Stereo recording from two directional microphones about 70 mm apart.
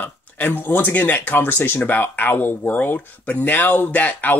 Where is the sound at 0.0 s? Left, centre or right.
Left.